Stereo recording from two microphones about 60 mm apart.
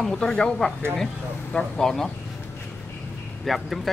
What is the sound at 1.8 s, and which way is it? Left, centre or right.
Speech, centre.